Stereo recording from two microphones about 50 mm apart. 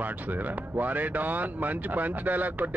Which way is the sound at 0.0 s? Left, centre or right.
Right.